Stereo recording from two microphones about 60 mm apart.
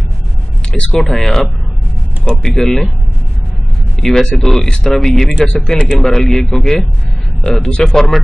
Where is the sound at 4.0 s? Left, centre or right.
Centre.